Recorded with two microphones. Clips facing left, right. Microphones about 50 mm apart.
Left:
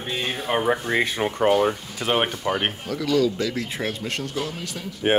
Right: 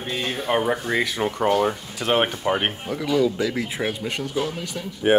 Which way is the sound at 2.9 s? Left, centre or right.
Right.